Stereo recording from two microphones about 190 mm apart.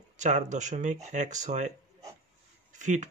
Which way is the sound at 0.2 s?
40° right (ahead or behind).